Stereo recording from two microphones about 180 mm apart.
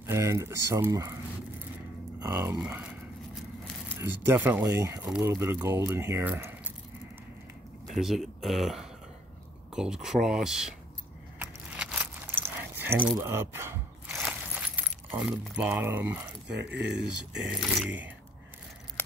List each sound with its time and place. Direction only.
0.0 s speech: 15° right (ahead or behind)
2.1 s speech: 15° right (ahead or behind)
3.9 s speech: 15° right (ahead or behind)
7.9 s speech: centre (ahead or behind)
11.3 s keys jangling: 5° right (ahead or behind)
13.2 s speech: 15° right (ahead or behind)
16.4 s speech: 70° right (ahead or behind)
17.5 s speech: 5° right (ahead or behind)
19.0 s a sound: 10° left (ahead or behind)